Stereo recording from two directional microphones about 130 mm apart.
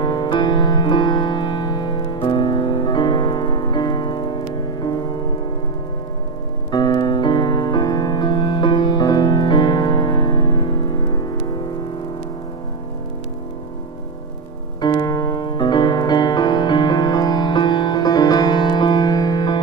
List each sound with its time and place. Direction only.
0.0 s music: 35° left (ahead or behind)
6.7 s music: 35° left (ahead or behind)
14.8 s music: 30° left (ahead or behind)